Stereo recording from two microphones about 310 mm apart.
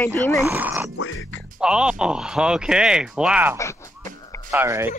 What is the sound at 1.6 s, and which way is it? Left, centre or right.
Speech, centre.